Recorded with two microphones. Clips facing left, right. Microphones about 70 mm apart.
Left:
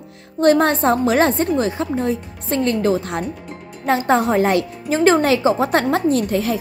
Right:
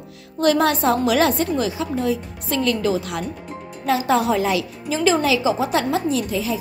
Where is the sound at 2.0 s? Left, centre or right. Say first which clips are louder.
Left 1 dB; left.